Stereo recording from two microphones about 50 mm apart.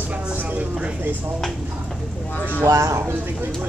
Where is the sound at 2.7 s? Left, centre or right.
Right.